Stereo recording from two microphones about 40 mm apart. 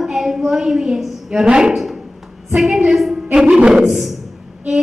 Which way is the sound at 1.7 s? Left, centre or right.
Centre.